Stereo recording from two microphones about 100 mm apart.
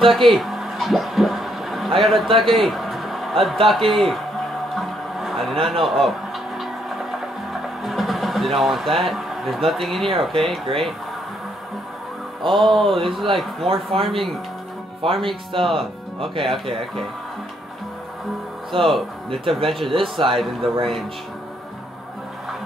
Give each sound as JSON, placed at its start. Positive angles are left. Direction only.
{"t": 0.0, "sound": "a sound", "side_deg": 0}
{"t": 2.0, "sound": "speech", "side_deg": 0}
{"t": 2.3, "sound": "a sound", "side_deg": 0}
{"t": 3.6, "sound": "speech", "side_deg": 0}
{"t": 4.7, "sound": "a sound", "side_deg": 0}
{"t": 7.8, "sound": "a sound", "side_deg": 0}
{"t": 9.7, "sound": "speech", "side_deg": 0}
{"t": 12.5, "sound": "speech", "side_deg": 0}
{"t": 13.7, "sound": "speech", "side_deg": -70}
{"t": 14.0, "sound": "speech", "side_deg": 0}
{"t": 15.0, "sound": "speech", "side_deg": -65}
{"t": 18.8, "sound": "speech", "side_deg": 0}
{"t": 19.9, "sound": "speech", "side_deg": -55}